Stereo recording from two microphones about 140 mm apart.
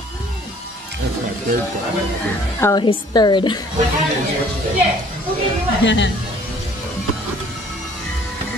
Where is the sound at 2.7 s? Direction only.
30° left (ahead or behind).